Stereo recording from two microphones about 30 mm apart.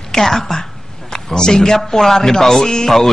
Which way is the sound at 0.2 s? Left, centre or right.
Centre.